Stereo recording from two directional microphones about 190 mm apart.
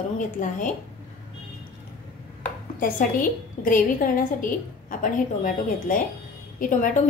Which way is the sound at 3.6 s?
45° left (ahead or behind).